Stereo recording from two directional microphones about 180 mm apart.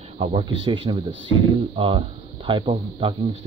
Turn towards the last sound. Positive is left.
turn(degrees=-30)  # may be behind; listen again after turning